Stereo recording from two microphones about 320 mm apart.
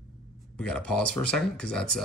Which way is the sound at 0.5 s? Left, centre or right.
Centre.